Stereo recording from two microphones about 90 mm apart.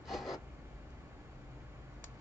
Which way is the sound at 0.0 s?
5° right (ahead or behind).